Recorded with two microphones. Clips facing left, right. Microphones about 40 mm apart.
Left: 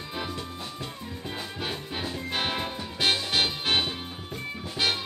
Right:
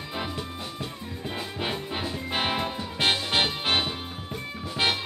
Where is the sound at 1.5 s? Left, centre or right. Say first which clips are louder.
Right 4 dB; centre.